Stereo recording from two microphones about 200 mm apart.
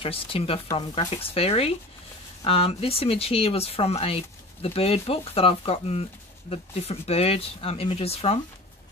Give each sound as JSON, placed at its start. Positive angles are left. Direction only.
{"t": 0.0, "sound": "speech", "side_deg": 30}